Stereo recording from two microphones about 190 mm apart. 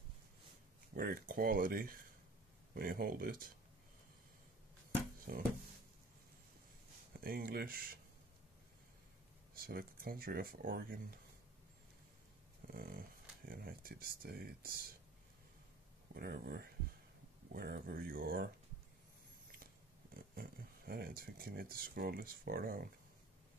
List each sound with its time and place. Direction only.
0.9 s speech: 50° right (ahead or behind)
5.3 s speech: 50° right (ahead or behind)
7.2 s speech: 50° right (ahead or behind)
9.6 s speech: 50° right (ahead or behind)
12.6 s dog: 50° right (ahead or behind)
13.5 s speech: 50° right (ahead or behind)
16.1 s speech: 55° right (ahead or behind)
20.2 s speech: 50° right (ahead or behind)